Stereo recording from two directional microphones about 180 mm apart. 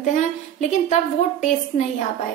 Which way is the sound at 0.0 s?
40° left (ahead or behind).